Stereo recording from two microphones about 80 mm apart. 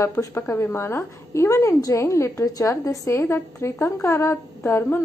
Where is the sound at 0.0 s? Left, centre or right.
Left.